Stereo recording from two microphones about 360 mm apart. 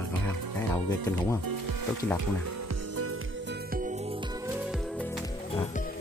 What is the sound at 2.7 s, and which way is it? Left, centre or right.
Music, right.